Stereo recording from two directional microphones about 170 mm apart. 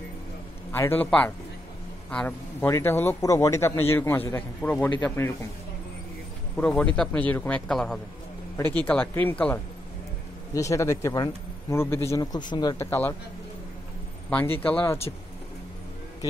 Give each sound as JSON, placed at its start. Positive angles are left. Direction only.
{"t": 0.7, "sound": "a man's voice", "side_deg": 15}
{"t": 6.5, "sound": "a man's voice", "side_deg": 5}
{"t": 14.3, "sound": "a man's voice", "side_deg": 10}